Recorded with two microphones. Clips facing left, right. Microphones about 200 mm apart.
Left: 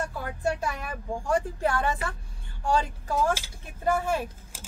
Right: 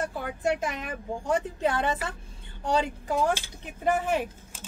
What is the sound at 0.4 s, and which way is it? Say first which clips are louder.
A woman's voice: right 1 dB; 20° right (ahead or behind).